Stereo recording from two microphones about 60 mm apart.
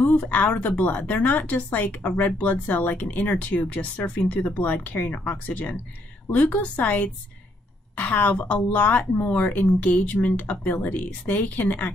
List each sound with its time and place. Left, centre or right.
0.0 s speech: left